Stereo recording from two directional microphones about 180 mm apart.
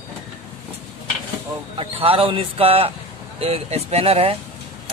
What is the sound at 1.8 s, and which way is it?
Speech, 30° right (ahead or behind).